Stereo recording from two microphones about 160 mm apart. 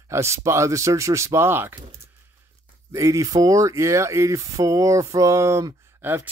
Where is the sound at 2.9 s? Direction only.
20° right (ahead or behind).